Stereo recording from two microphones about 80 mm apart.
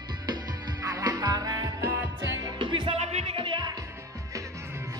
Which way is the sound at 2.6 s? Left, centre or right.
Right.